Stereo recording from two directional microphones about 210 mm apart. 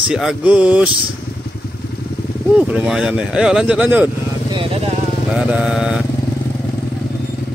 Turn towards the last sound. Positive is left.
turn(degrees=-5)  # may be behind; listen again after turning